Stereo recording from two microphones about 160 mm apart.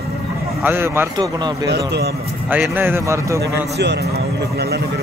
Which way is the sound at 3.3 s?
90° right.